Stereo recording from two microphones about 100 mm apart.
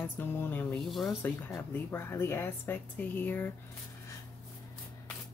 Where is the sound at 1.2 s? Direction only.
20° left (ahead or behind).